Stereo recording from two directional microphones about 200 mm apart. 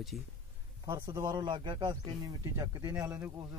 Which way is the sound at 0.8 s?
15° right (ahead or behind).